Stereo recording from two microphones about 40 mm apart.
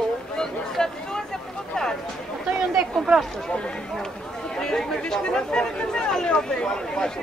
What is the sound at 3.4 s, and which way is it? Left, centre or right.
Speech, left.